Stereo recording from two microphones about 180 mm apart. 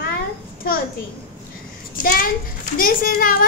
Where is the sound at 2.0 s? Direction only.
55° left (ahead or behind).